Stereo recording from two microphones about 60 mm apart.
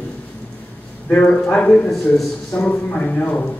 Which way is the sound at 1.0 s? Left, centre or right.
Centre.